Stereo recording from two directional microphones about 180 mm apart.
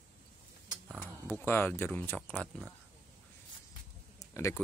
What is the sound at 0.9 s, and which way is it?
Speech, 10° left (ahead or behind).